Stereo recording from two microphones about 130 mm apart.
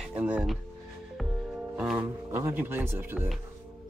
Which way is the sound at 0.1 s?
10° right (ahead or behind).